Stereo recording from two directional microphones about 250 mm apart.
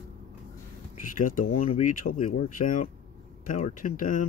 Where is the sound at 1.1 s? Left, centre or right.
Left.